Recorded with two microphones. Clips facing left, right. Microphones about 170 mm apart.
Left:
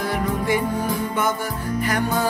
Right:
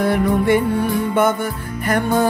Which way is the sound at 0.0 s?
60° right (ahead or behind).